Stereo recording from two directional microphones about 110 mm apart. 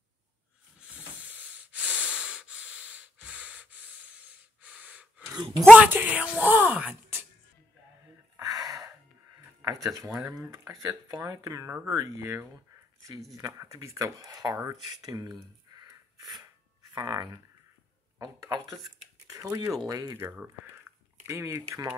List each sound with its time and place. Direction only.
0.7 s breathing: 10° right (ahead or behind)
4.6 s gasp: 15° right (ahead or behind)
5.3 s speech: 35° right (ahead or behind)
5.8 s speech: 15° right (ahead or behind)
8.4 s gasp: 35° right (ahead or behind)
9.6 s speech: 30° right (ahead or behind)
15.9 s a sound: 35° right (ahead or behind)
16.9 s speech: 40° right (ahead or behind)
20.2 s speech: 20° right (ahead or behind)